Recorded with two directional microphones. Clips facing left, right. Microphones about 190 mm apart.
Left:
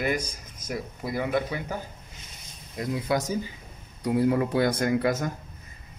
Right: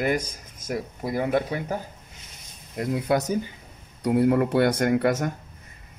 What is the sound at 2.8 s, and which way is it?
Speech, 60° right (ahead or behind).